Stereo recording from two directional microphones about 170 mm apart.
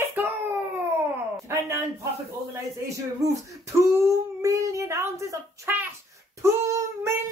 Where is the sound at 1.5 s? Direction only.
20° right (ahead or behind).